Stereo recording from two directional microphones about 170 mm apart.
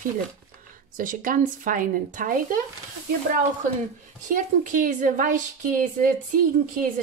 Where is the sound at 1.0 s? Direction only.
55° right (ahead or behind).